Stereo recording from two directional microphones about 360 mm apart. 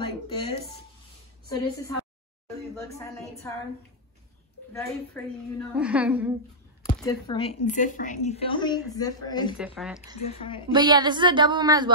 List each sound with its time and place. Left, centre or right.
0.0 s a sound: centre
1.5 s a woman's voice: centre
4.7 s a woman's voice: centre
6.9 s a woman's voice: centre
9.8 s a woman's voice: centre
10.2 s a woman's voice: centre
10.7 s a woman's voice: centre